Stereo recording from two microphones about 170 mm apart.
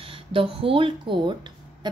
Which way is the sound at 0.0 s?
30° right (ahead or behind).